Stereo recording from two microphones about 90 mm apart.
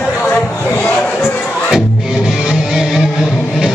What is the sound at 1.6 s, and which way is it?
Music, 5° right (ahead or behind).